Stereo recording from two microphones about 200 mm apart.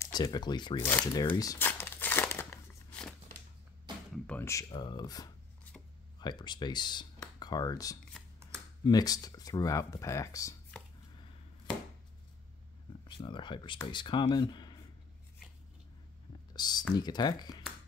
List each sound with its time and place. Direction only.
0.0 s speech: 20° left (ahead or behind)
0.8 s speech: 10° left (ahead or behind)
1.3 s crumpling: 15° left (ahead or behind)
4.1 s a sound: 10° left (ahead or behind)
4.6 s speech: 20° left (ahead or behind)
13.2 s speech: 25° left (ahead or behind)
16.5 s a sound: 20° left (ahead or behind)
16.9 s speech: 20° left (ahead or behind)